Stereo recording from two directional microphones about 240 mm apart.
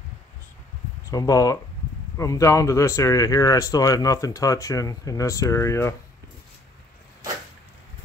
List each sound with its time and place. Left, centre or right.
1.1 s speech: centre